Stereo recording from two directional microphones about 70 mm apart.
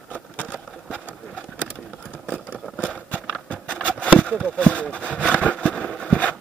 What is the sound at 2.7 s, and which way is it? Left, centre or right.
Horse, centre.